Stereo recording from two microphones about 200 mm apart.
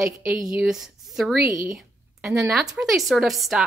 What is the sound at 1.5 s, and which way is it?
Speech, 15° right (ahead or behind).